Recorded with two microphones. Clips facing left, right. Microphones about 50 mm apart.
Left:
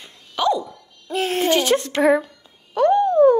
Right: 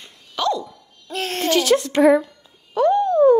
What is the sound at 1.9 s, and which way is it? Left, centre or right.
Speech, left.